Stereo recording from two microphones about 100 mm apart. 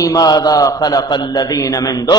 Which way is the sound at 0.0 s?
40° left (ahead or behind).